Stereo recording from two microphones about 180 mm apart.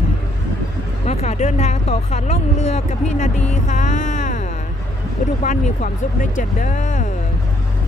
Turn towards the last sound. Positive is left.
turn(degrees=45)  # may be behind; listen again after turning